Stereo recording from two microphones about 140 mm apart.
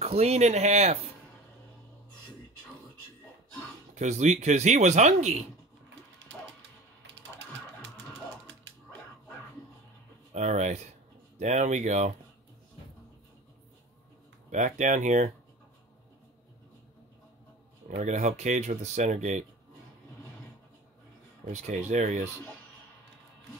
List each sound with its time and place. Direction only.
0.0 s speech: 50° right (ahead or behind)
3.9 s speech: 55° right (ahead or behind)
10.3 s speech: 55° right (ahead or behind)
14.5 s speech: 60° right (ahead or behind)
17.8 s speech: 65° right (ahead or behind)
21.5 s speech: 55° right (ahead or behind)